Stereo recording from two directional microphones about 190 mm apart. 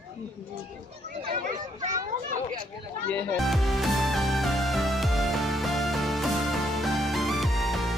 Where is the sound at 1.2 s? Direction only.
30° right (ahead or behind).